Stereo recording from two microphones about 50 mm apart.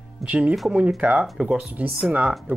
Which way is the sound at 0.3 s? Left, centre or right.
Right.